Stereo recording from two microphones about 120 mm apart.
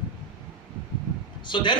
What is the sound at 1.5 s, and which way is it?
Speech, 40° left (ahead or behind).